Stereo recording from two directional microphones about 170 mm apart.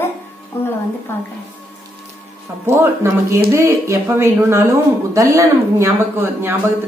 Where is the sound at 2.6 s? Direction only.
15° right (ahead or behind).